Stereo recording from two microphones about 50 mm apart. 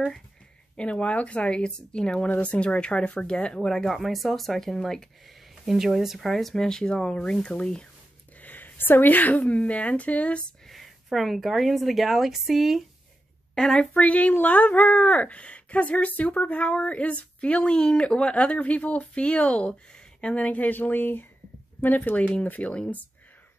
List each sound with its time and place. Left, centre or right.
0.7 s speech: left
3.6 s speech: centre
5.7 s speech: centre
8.4 s a woman's voice: left
10.7 s a woman's voice: centre
13.6 s speech: centre; by 22.3 s left
22.3 s speech: left